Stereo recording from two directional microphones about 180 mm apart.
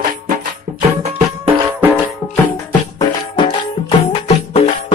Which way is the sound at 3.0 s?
25° left (ahead or behind).